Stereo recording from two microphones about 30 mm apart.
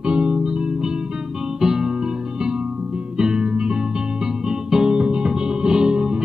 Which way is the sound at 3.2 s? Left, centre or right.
Right.